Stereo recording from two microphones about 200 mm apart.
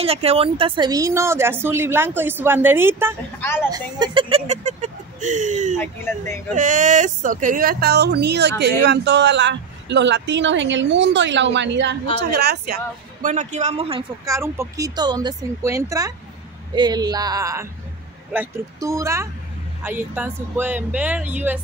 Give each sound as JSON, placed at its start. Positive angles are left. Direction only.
{"t": 0.0, "sound": "speech", "side_deg": -30}
{"t": 3.3, "sound": "speech", "side_deg": 10}
{"t": 3.7, "sound": "speech", "side_deg": -25}
{"t": 5.8, "sound": "speech", "side_deg": 10}
{"t": 6.5, "sound": "speech", "side_deg": -40}
{"t": 13.3, "sound": "a man's voice", "side_deg": -35}
{"t": 14.2, "sound": "speech", "side_deg": -15}
{"t": 16.7, "sound": "a sound", "side_deg": -20}
{"t": 18.3, "sound": "speech", "side_deg": -10}